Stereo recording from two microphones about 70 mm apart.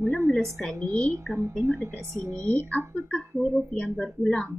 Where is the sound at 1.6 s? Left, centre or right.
Right.